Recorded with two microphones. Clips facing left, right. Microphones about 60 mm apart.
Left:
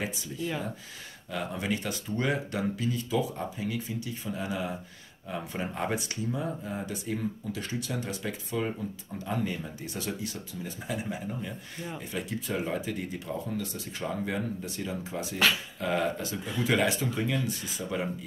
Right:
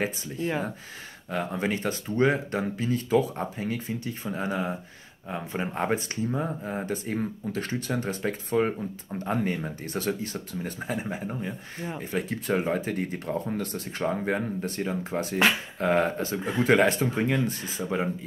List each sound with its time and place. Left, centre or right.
0.0 s speech: right
12.4 s speech: right
15.3 s speech: right